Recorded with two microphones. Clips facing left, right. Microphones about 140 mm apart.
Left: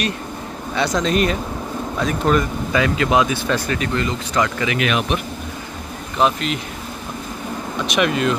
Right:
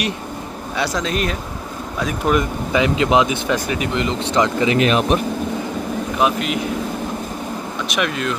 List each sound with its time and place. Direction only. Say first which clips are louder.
0.7 s speech: left 3 dB; centre (ahead or behind); by 5.2 s 35° right (ahead or behind)
6.1 s speech: left 1 dB; 5° right (ahead or behind)
7.9 s speech: left 4 dB; centre (ahead or behind)